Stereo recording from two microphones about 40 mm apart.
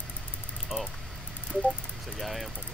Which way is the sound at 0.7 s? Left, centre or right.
Centre.